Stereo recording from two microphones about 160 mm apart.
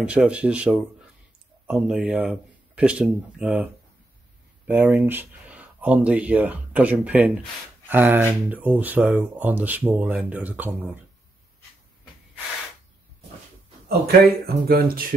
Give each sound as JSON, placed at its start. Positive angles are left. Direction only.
{"t": 0.0, "sound": "speech", "side_deg": -5}
{"t": 4.6, "sound": "speech", "side_deg": -10}
{"t": 13.8, "sound": "speech", "side_deg": -75}